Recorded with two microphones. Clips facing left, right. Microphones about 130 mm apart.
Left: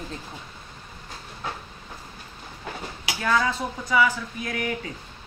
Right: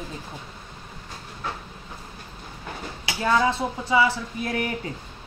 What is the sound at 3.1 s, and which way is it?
Speech, 25° right (ahead or behind).